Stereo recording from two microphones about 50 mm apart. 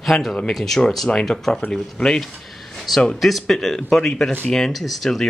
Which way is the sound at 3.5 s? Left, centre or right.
Centre.